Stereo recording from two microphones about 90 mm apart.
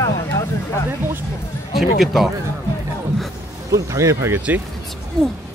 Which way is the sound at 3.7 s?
35° right (ahead or behind).